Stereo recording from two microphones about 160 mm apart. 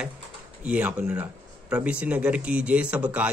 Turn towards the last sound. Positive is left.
turn(degrees=-10)  # may be behind; listen again after turning